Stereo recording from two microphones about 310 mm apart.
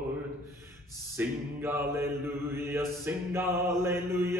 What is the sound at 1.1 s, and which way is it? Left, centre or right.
Mantra, centre.